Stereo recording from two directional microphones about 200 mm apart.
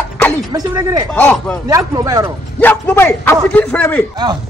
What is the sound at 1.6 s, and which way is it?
Speech, 15° right (ahead or behind).